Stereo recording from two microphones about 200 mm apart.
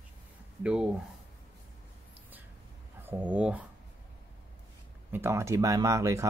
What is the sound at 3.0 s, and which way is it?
Speech, 10° right (ahead or behind).